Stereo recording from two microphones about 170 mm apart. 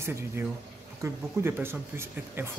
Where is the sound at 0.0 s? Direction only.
15° right (ahead or behind).